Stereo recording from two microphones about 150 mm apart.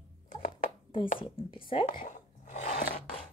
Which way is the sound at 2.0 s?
65° left (ahead or behind).